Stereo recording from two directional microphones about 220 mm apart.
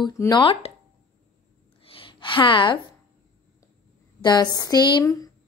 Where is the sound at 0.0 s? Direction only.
20° left (ahead or behind).